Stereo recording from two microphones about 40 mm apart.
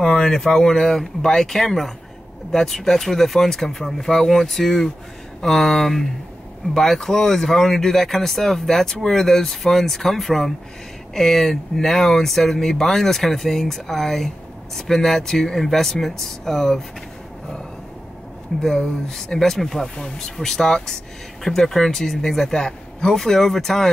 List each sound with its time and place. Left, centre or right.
0.0 s speech: centre
18.6 s speech: centre